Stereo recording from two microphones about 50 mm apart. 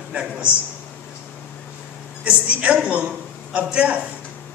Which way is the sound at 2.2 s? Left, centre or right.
Right.